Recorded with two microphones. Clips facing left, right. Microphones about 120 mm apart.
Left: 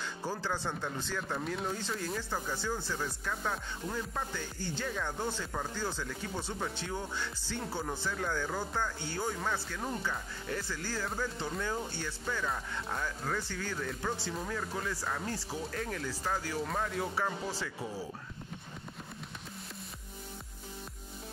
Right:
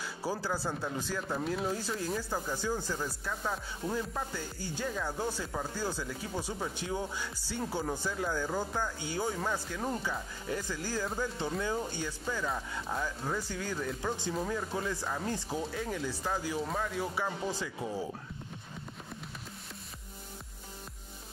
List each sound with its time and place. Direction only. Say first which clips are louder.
0.0 s speech: right 2 dB; 10° right (ahead or behind)
4.1 s speech: right 1 dB; 10° right (ahead or behind)
15.7 s speech: right 2 dB; 5° right (ahead or behind)